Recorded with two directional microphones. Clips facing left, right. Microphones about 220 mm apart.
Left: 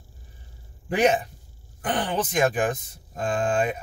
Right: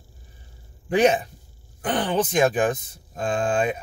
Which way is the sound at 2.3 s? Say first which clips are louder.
Right 1 dB; 20° right (ahead or behind).